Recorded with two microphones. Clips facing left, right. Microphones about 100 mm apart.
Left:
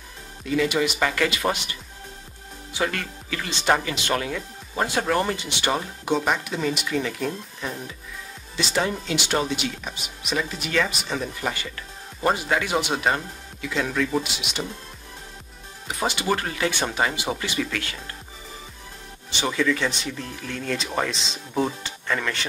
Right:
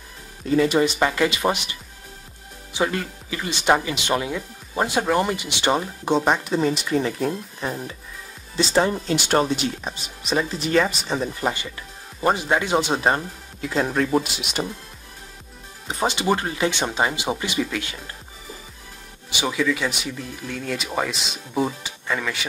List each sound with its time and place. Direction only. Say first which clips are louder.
0.5 s speech: right 4 dB; 35° right (ahead or behind)
0.9 s speech: right 3 dB; 20° right (ahead or behind); by 14.3 s 40° right (ahead or behind)
15.9 s speech: right 3 dB; 25° right (ahead or behind)
19.3 s speech: even; 10° right (ahead or behind)